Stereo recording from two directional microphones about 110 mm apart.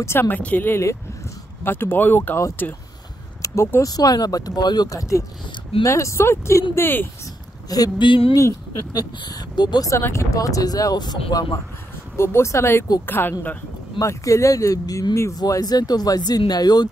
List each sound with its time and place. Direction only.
0.0 s speech: 20° left (ahead or behind)
3.4 s speech: 25° left (ahead or behind)
3.8 s speech: 35° left (ahead or behind)
7.7 s speech: 35° left (ahead or behind)
8.1 s a sound: 50° left (ahead or behind)
8.4 s speech: 30° left (ahead or behind)
9.2 s speech: 40° left (ahead or behind)
12.2 s speech: 25° left (ahead or behind)
13.9 s speech: 30° left (ahead or behind)